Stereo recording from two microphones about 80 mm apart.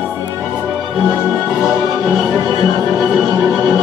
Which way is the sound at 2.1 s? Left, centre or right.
Centre.